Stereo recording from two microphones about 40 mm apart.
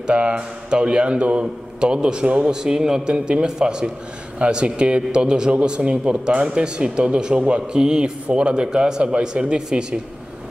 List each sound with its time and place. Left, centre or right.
0.0 s a man's voice: right
2.5 s a man's voice: centre